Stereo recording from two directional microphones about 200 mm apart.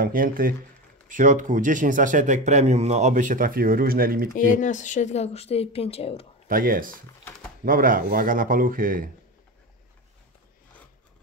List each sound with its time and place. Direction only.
0.0 s speech: 45° right (ahead or behind)
4.4 s a woman's voice: 40° left (ahead or behind)
6.4 s speech: 45° right (ahead or behind)